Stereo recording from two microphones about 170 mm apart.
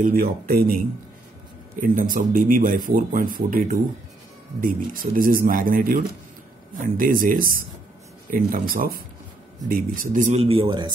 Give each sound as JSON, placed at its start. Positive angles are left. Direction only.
{"t": 0.0, "sound": "speech", "side_deg": -60}
{"t": 1.8, "sound": "speech", "side_deg": -55}